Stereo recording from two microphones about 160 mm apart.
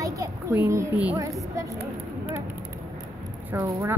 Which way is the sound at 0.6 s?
10° right (ahead or behind).